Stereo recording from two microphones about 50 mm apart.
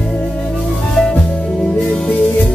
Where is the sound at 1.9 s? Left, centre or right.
Centre.